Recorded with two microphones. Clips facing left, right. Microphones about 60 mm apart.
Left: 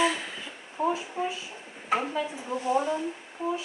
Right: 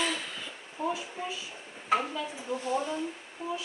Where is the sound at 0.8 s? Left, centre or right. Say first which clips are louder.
Left 5 dB; left.